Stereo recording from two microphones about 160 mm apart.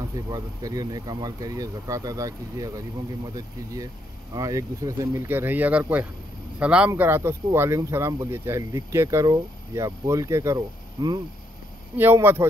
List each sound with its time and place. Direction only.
0.3 s speech: 25° right (ahead or behind)